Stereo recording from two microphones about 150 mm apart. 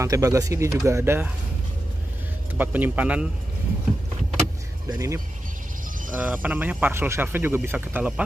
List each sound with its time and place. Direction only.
0.0 s speech: 20° right (ahead or behind)
2.5 s speech: 10° right (ahead or behind)
4.8 s speech: 20° right (ahead or behind)
6.1 s speech: 10° right (ahead or behind)